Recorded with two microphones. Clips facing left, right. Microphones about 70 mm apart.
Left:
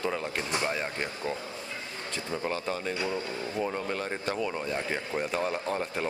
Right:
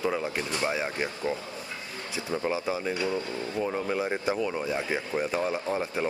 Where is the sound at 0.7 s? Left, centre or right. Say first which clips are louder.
Right 2 dB; centre.